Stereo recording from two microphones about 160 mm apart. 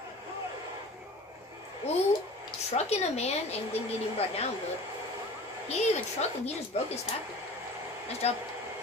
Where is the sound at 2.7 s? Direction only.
40° left (ahead or behind).